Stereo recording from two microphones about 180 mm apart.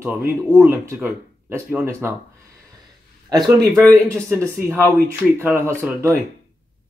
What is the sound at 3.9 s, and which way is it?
Speech, 15° right (ahead or behind).